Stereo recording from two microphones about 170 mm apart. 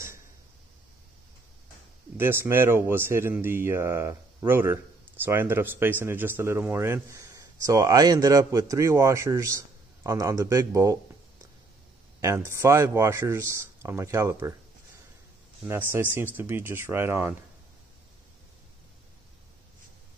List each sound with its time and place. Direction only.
2.1 s speech: 15° right (ahead or behind)
12.2 s speech: 15° right (ahead or behind)
15.6 s speech: 15° right (ahead or behind)